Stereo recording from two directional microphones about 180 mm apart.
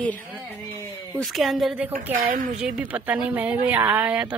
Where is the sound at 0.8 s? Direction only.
5° left (ahead or behind).